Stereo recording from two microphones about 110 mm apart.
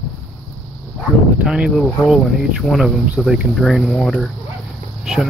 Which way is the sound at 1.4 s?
5° right (ahead or behind).